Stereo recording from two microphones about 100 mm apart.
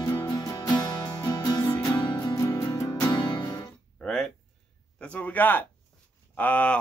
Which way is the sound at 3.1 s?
50° left (ahead or behind).